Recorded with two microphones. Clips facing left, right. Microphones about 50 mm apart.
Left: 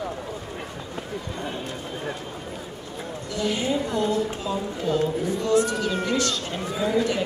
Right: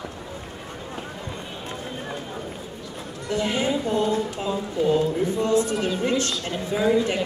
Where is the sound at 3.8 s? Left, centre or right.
Right.